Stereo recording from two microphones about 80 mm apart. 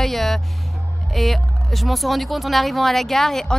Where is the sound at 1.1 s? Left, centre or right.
Centre.